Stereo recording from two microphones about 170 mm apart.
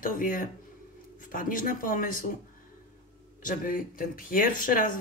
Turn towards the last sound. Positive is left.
turn(degrees=50)  # may be behind; listen again after turning